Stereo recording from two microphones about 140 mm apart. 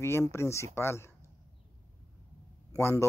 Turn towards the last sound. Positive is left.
turn(degrees=20)  # may be behind; listen again after turning